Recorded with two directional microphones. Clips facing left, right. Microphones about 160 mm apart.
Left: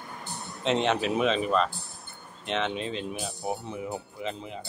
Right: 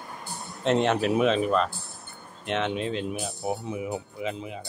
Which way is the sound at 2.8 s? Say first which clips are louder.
Right 4 dB; 55° right (ahead or behind).